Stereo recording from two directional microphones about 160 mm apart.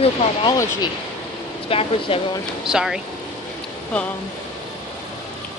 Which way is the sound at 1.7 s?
35° left (ahead or behind).